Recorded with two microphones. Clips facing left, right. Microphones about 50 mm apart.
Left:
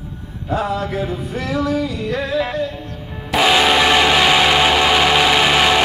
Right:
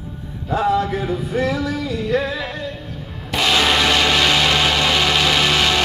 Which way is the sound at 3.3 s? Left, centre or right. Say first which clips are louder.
Left 3 dB; centre.